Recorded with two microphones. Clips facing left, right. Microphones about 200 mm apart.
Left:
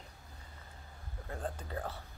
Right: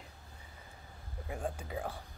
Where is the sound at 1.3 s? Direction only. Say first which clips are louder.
Right 2 dB; 10° right (ahead or behind).